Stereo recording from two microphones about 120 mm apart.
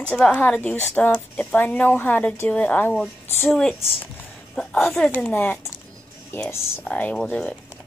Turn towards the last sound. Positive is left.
turn(degrees=10)  # may be behind; listen again after turning